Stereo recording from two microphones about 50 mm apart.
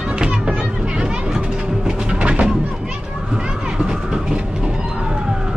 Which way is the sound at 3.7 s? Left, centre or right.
Centre.